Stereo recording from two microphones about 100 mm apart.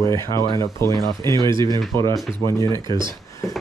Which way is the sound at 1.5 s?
45° right (ahead or behind).